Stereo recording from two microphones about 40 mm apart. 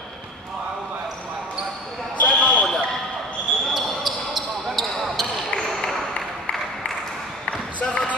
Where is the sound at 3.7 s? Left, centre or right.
Centre.